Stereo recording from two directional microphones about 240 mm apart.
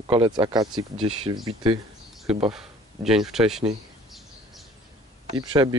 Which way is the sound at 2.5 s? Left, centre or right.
Centre.